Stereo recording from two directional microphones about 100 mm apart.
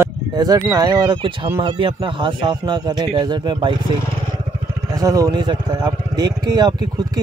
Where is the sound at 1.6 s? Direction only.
55° right (ahead or behind).